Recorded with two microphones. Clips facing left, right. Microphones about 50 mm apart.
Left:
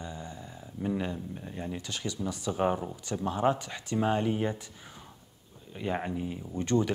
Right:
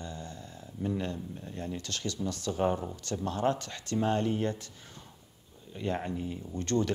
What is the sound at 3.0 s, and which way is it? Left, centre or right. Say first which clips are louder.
Speech: left 2 dB; centre.